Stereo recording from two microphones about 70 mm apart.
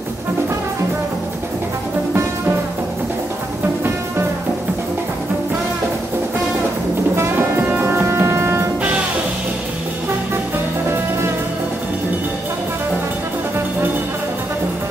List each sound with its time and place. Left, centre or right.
7.2 s music: right